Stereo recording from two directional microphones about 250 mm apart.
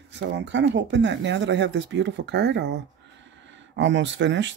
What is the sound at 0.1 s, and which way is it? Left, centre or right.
Speech, right.